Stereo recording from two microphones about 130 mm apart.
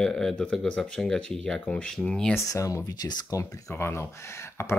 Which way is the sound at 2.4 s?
25° left (ahead or behind).